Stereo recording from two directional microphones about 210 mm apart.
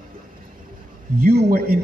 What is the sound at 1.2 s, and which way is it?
Speech, 45° right (ahead or behind).